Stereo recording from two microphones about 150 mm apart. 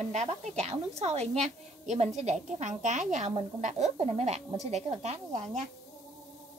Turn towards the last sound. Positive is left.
turn(degrees=-55)  # may be behind; listen again after turning